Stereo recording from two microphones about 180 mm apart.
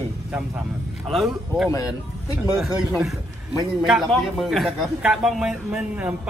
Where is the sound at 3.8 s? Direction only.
Centre (ahead or behind).